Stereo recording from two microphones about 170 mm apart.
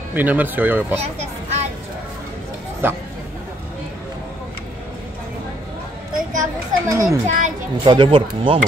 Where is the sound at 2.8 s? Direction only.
10° right (ahead or behind).